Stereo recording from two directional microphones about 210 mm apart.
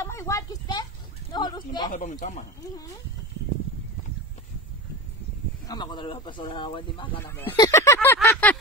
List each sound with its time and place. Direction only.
0.0 s a sound: 15° left (ahead or behind)
1.9 s speech: 40° left (ahead or behind)
2.6 s speech: 15° left (ahead or behind)
5.7 s speech: 20° left (ahead or behind)
7.2 s speech: 10° left (ahead or behind)